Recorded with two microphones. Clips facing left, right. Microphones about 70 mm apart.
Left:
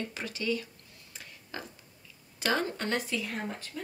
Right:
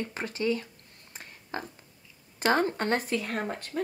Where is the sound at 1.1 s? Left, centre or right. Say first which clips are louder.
Right 5 dB; right.